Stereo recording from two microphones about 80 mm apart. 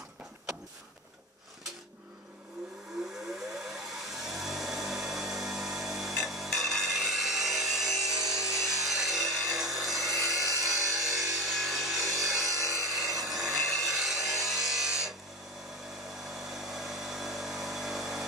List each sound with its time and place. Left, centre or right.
3.3 s vehicle: centre
10.7 s tools: right
11.0 s wood: centre
12.4 s a sound: right
13.2 s a sound: centre
13.7 s music: centre
16.1 s vehicle: centre